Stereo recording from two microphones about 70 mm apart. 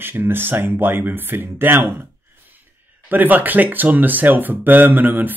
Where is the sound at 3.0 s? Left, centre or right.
Right.